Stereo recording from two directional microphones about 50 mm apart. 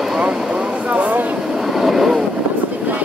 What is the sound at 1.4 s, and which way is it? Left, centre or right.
Vehicle, centre.